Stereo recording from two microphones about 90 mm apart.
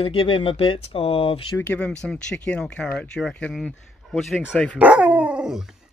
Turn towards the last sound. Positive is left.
turn(degrees=-10)  # may be behind; listen again after turning